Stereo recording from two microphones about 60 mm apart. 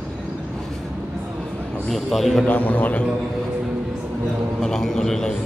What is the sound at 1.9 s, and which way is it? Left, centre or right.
Speech, centre.